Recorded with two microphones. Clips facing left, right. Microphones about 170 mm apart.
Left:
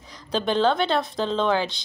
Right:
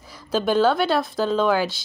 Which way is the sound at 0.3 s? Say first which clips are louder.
Right 3 dB; 5° right (ahead or behind).